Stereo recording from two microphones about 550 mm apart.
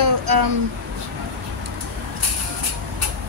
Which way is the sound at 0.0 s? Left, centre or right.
Right.